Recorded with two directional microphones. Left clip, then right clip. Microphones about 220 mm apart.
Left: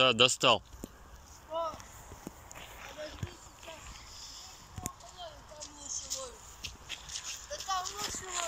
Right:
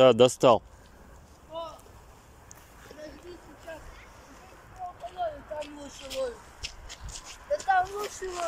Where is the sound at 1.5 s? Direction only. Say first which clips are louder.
Left 2 dB; 15° right (ahead or behind).